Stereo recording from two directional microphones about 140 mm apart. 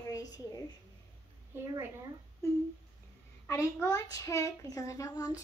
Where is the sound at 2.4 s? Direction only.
20° left (ahead or behind).